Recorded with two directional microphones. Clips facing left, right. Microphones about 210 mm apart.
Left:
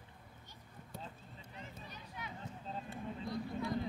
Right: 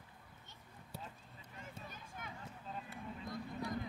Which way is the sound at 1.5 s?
50° right (ahead or behind).